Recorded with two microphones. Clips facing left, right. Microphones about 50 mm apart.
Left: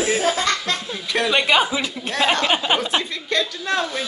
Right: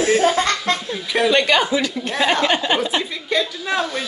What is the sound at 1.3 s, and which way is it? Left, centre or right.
Speech, centre.